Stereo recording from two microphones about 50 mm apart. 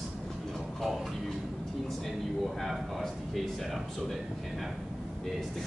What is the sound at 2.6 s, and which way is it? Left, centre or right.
Speech, centre.